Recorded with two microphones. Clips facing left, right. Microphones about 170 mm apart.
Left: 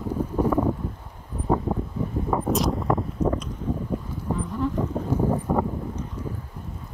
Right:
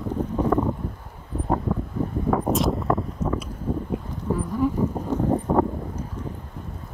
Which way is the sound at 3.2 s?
30° left (ahead or behind).